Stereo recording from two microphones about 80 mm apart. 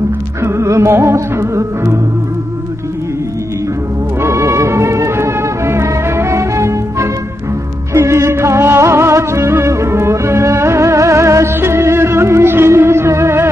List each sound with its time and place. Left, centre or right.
0.4 s music: right
4.2 s music: right